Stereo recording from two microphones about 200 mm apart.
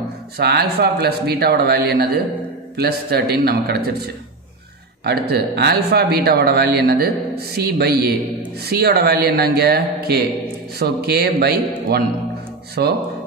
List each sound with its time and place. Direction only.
0.4 s speech: 55° right (ahead or behind)
5.0 s speech: 55° right (ahead or behind)